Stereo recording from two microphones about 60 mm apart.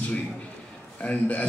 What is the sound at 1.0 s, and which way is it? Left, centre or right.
Speech, left.